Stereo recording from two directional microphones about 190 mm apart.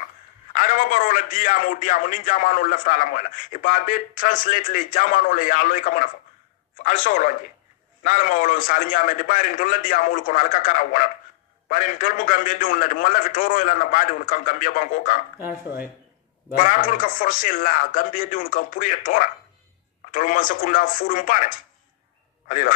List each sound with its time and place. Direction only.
0.5 s a man's voice: 45° left (ahead or behind)
15.4 s speech: 10° right (ahead or behind)
16.5 s a man's voice: 45° left (ahead or behind)